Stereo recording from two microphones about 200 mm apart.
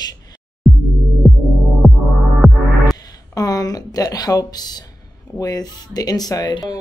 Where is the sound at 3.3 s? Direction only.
20° left (ahead or behind).